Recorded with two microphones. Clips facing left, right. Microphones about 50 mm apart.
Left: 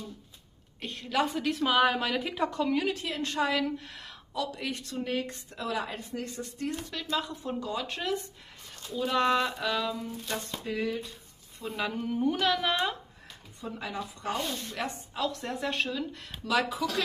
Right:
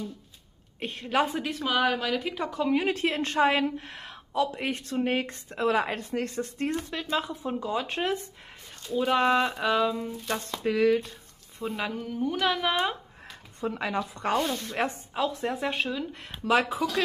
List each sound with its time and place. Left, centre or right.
0.7 s a woman's voice: right
1.4 s speech: centre
2.9 s a woman's voice: right
5.9 s a woman's voice: right
9.9 s a woman's voice: right
10.6 s speech: right
11.6 s speech: centre
11.9 s speech: centre
12.4 s speech: centre
13.6 s speech: right
14.5 s a woman's voice: right
15.1 s speech: centre
16.8 s speech: right